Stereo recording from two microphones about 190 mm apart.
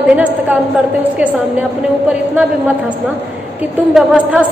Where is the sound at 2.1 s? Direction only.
5° right (ahead or behind).